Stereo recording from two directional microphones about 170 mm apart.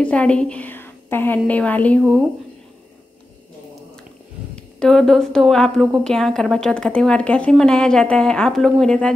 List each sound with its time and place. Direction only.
0.0 s a woman's voice: 5° left (ahead or behind)
4.7 s a woman's voice: 5° left (ahead or behind)